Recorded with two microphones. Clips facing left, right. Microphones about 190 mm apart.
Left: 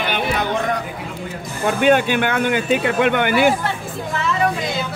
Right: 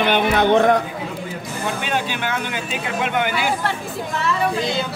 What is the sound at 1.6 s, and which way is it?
Speech, 55° left (ahead or behind).